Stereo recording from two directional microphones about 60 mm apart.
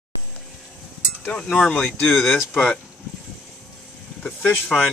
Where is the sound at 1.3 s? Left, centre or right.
Centre.